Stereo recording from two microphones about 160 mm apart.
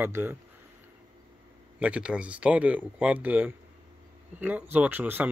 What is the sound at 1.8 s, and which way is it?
Speech, 5° right (ahead or behind).